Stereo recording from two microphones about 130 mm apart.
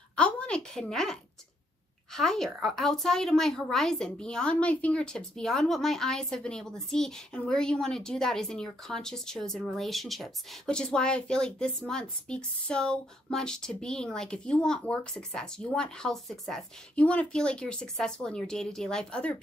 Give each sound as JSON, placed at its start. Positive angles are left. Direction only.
{"t": 0.1, "sound": "a woman's voice", "side_deg": 10}